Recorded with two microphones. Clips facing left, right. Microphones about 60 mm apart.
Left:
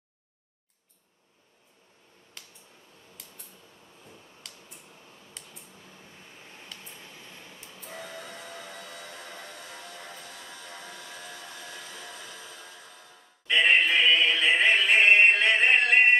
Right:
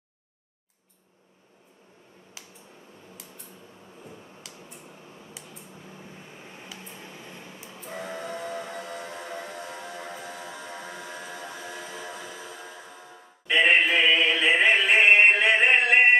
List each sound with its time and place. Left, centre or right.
2.4 s finger snapping: centre
4.0 s tick-tock: right
4.8 s tick: right
5.3 s a sound: centre
5.8 s vehicle: centre
6.8 s a sound: right
7.8 s train: centre